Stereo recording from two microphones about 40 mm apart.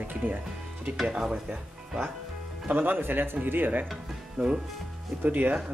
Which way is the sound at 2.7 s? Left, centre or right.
Right.